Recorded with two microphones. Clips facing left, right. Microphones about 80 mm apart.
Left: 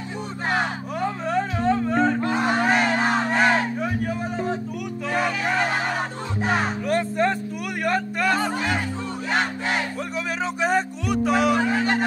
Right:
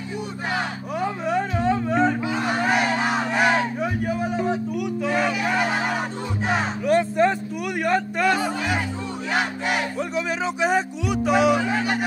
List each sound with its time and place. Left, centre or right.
0.9 s music: centre
2.3 s music: left
2.6 s crowd: centre
3.3 s music: centre
5.0 s crowd: centre
6.5 s music: centre
9.3 s battle cry: centre
9.9 s music: centre